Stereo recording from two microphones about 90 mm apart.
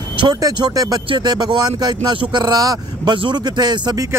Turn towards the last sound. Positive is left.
turn(degrees=-50)  # may be behind; listen again after turning